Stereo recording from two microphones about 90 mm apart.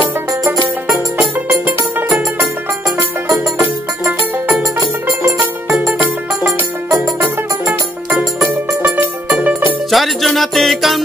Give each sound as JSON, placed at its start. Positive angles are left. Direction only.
{"t": 3.0, "sound": "music", "side_deg": -35}
{"t": 7.6, "sound": "music", "side_deg": -5}
{"t": 9.3, "sound": "music", "side_deg": -10}
{"t": 9.8, "sound": "music", "side_deg": 0}